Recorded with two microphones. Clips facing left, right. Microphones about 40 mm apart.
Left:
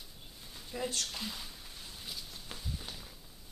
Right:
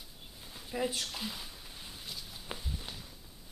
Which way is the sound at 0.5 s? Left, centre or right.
Centre.